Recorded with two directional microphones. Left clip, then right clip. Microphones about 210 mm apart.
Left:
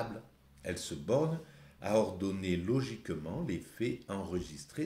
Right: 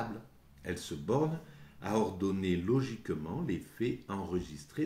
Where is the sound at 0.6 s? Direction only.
20° left (ahead or behind).